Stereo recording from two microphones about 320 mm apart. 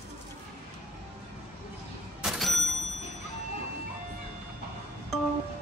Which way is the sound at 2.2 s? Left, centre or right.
Centre.